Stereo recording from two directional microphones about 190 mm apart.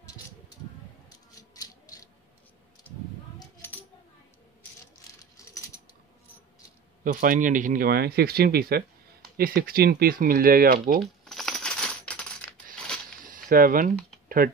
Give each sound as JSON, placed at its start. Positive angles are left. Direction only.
{"t": 1.3, "sound": "a sound", "side_deg": 20}
{"t": 7.1, "sound": "speech", "side_deg": -45}
{"t": 11.2, "sound": "coin", "side_deg": 0}
{"t": 13.3, "sound": "speech", "side_deg": -45}